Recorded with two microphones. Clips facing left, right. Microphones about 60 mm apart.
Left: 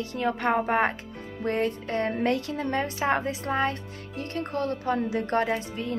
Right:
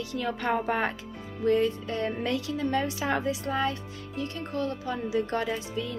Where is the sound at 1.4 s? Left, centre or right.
Left.